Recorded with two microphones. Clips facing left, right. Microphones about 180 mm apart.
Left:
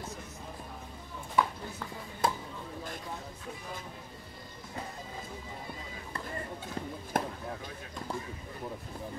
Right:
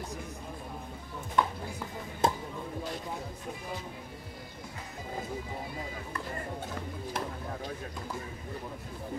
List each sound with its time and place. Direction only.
1.4 s music: 5° left (ahead or behind)
2.2 s music: 25° right (ahead or behind)
7.2 s chop: 50° left (ahead or behind)